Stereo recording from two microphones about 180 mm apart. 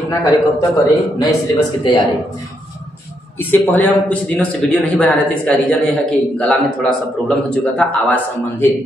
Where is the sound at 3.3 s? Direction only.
10° left (ahead or behind).